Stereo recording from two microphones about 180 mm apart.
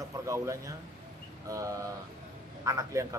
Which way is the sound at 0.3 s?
15° right (ahead or behind).